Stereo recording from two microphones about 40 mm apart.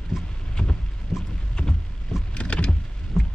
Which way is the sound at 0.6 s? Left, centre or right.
Centre.